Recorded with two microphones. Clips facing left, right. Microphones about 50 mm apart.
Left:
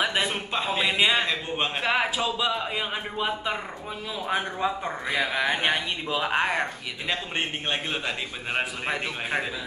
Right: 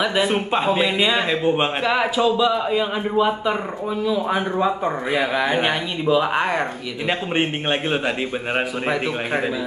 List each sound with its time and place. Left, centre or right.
0.0 s speech: centre
0.3 s a man's voice: right
1.8 s a man's voice: centre
4.6 s speech: centre
7.1 s a man's voice: right